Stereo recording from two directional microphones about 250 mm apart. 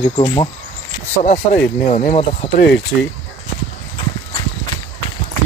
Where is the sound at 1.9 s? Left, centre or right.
Left.